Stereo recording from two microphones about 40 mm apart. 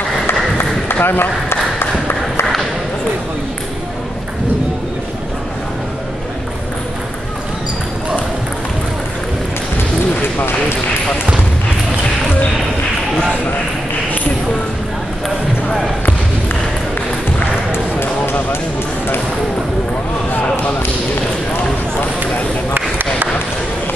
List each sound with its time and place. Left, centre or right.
1.0 s run: left
22.8 s run: right